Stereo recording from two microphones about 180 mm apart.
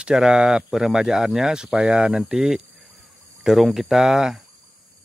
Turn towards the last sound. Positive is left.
turn(degrees=0)  # may be behind; listen again after turning